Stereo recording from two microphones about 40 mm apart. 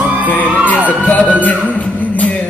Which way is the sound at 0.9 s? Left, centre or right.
Left.